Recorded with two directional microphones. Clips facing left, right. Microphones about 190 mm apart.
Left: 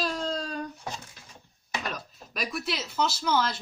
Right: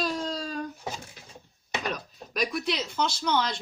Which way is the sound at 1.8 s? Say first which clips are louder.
Right 3 dB; centre (ahead or behind).